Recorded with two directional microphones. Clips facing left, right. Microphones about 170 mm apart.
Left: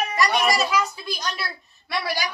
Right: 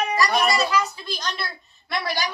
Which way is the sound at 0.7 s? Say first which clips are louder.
Even; 10° left (ahead or behind).